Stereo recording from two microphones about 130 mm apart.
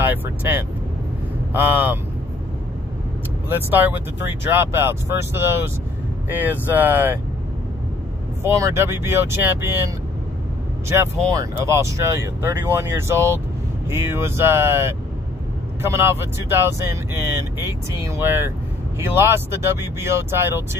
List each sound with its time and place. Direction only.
0.0 s speech: 15° right (ahead or behind)
3.4 s speech: 15° right (ahead or behind)
8.4 s speech: 20° right (ahead or behind)
11.3 s speech: 20° right (ahead or behind)
18.0 s speech: 20° right (ahead or behind)